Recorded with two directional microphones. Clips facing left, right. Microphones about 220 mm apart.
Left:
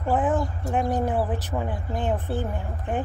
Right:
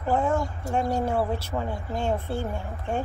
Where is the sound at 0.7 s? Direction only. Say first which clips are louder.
Left 1 dB; 15° left (ahead or behind).